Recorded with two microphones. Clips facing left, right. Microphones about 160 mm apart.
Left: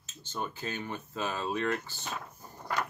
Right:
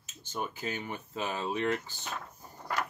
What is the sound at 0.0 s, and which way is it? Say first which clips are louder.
Speech: even; 10° right (ahead or behind).